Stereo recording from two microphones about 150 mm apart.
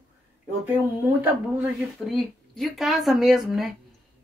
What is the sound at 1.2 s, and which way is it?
A woman's voice, 10° right (ahead or behind).